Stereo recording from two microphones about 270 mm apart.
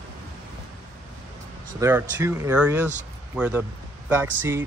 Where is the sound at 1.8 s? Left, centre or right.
Centre.